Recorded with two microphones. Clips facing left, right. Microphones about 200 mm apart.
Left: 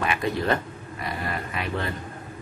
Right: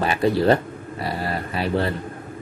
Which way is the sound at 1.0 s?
30° right (ahead or behind).